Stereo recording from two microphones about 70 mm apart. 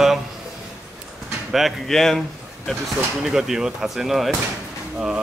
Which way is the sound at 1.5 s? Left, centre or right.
Centre.